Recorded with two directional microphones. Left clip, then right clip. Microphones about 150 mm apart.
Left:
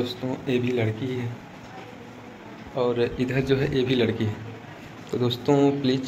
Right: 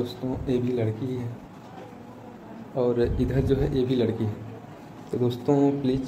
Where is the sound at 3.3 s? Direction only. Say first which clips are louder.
Left 1 dB; 20° right (ahead or behind).